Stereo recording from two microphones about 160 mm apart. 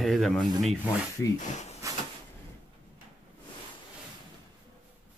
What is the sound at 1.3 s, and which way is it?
Speech, 50° left (ahead or behind).